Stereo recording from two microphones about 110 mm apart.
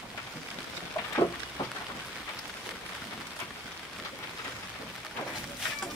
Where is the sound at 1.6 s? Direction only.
35° left (ahead or behind).